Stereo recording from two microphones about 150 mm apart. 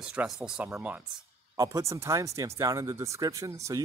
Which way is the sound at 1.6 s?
20° right (ahead or behind).